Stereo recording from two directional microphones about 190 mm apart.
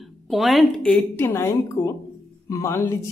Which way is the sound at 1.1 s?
10° left (ahead or behind).